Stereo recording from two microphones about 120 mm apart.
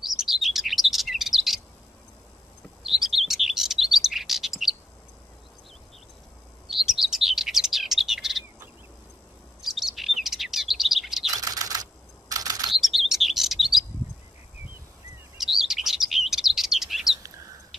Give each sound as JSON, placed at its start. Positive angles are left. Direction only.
{"t": 0.0, "sound": "chirp", "side_deg": -5}
{"t": 2.8, "sound": "chirp", "side_deg": -5}
{"t": 6.7, "sound": "chirp", "side_deg": 0}
{"t": 9.6, "sound": "chirp", "side_deg": 0}
{"t": 11.3, "sound": "typing", "side_deg": -30}
{"t": 12.7, "sound": "chirp", "side_deg": 0}
{"t": 15.3, "sound": "chirp", "side_deg": -5}